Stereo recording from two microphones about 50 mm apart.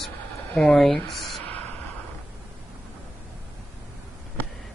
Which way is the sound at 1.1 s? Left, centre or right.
Centre.